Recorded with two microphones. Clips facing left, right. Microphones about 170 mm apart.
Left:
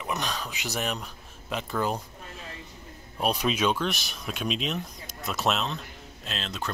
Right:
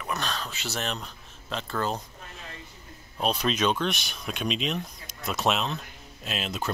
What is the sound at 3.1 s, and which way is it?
Speech, 10° left (ahead or behind).